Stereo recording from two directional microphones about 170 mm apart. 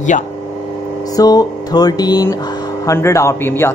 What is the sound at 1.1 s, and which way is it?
A man's voice, 20° left (ahead or behind).